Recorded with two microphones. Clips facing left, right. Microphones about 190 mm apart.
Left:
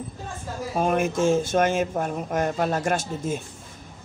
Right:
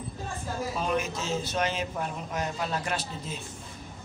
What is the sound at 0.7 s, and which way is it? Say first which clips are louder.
Speech: left 10 dB; 50° left (ahead or behind).